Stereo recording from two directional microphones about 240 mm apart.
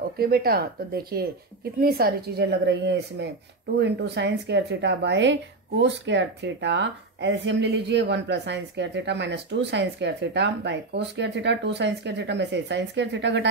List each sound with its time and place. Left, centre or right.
0.2 s a woman's voice: right